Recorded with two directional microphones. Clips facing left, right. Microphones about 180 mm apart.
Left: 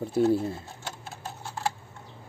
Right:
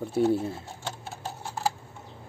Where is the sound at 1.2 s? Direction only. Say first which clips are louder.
Right 2 dB; 20° right (ahead or behind).